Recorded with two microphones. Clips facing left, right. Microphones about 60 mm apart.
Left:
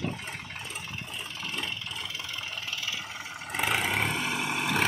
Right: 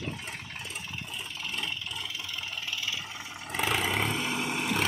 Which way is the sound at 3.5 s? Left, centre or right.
Centre.